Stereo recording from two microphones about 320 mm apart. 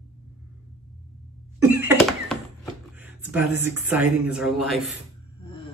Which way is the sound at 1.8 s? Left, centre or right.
Centre.